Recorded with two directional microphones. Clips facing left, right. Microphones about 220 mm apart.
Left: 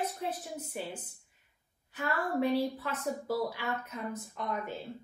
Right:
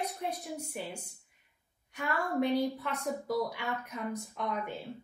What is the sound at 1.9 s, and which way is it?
A woman's voice, centre (ahead or behind).